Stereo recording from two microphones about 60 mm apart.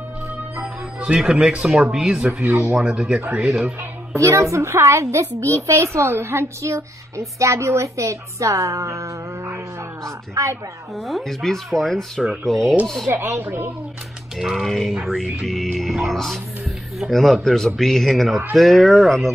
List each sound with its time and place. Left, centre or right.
0.6 s music: centre
1.7 s speech: centre
4.2 s a child's voice: right
11.0 s speech: centre
13.4 s speech: right
14.4 s speech: centre